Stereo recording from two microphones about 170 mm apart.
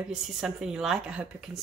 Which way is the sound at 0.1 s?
5° right (ahead or behind).